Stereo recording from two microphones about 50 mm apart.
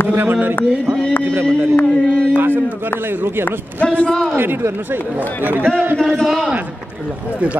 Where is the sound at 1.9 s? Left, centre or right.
Left.